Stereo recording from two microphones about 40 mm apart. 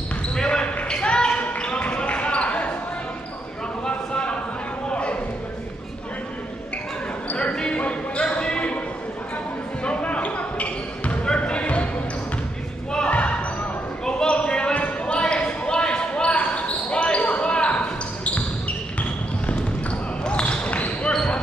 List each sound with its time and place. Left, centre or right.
0.4 s basketball bounce: centre
3.8 s a sound: centre
7.5 s basketball bounce: left
9.8 s basketball bounce: left
13.1 s basketball bounce: left
21.1 s basketball bounce: centre